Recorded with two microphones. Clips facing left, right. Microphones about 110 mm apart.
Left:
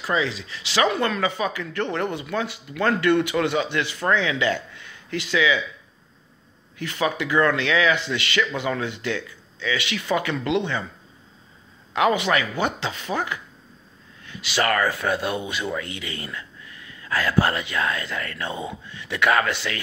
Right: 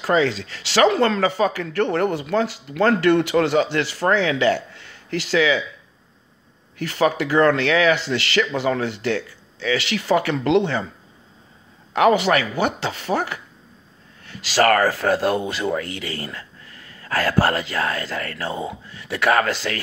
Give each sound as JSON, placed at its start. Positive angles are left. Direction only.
{"t": 0.0, "sound": "speech", "side_deg": -40}
{"t": 6.8, "sound": "speech", "side_deg": -40}
{"t": 11.9, "sound": "speech", "side_deg": -40}